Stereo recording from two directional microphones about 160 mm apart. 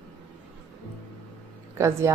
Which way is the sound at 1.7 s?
15° right (ahead or behind).